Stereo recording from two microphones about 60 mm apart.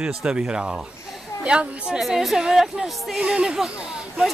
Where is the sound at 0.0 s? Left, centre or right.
Centre.